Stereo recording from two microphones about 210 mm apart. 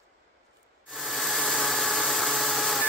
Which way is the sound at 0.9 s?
Centre (ahead or behind).